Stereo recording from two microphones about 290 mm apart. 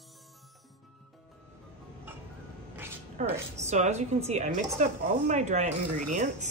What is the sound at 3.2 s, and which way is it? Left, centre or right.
Speech, right.